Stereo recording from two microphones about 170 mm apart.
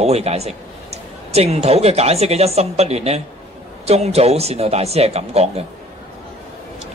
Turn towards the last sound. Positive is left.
turn(degrees=-40)  # may be behind; listen again after turning